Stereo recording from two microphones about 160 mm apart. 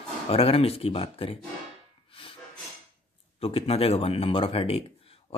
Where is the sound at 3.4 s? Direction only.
35° left (ahead or behind).